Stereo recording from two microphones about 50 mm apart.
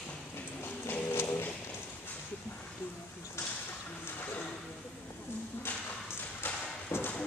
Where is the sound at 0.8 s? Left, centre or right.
Left.